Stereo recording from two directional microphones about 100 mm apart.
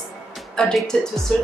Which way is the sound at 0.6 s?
5° left (ahead or behind).